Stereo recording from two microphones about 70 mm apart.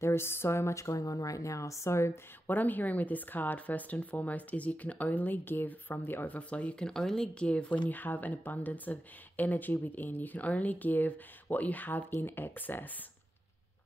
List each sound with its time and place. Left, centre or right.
0.0 s a woman's voice: left
2.4 s speech: left